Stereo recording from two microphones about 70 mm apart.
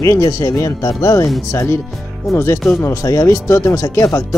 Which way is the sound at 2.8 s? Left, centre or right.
Left.